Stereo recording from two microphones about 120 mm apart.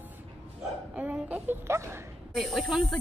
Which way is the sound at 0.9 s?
10° right (ahead or behind).